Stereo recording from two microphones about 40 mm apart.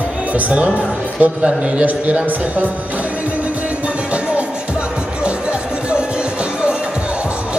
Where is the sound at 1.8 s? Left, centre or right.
Right.